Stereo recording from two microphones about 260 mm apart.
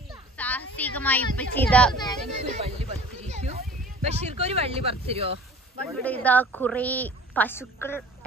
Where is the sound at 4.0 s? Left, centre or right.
Right.